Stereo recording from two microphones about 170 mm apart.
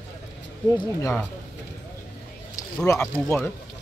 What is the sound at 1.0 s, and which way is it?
Speech, 15° left (ahead or behind).